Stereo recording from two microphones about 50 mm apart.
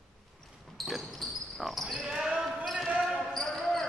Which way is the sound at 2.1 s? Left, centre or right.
Centre.